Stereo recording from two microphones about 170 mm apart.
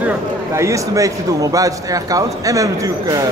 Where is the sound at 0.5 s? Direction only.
20° right (ahead or behind).